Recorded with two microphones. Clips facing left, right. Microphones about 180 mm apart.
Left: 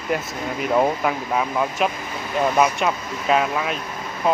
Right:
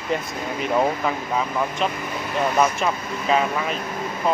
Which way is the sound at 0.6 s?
5° left (ahead or behind).